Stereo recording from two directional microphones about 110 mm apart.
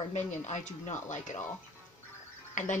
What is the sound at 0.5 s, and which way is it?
Speech, 90° left.